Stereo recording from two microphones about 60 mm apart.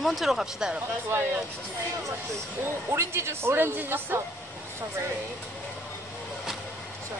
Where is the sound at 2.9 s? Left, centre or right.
Right.